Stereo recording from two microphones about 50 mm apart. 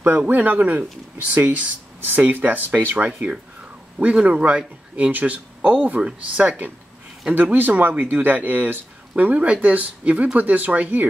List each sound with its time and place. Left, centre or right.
0.3 s speech: right